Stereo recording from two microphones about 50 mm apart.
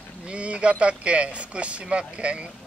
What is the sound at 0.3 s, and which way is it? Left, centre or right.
Speech, right.